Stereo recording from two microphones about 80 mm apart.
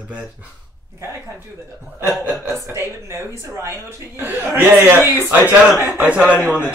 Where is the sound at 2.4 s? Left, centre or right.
Right.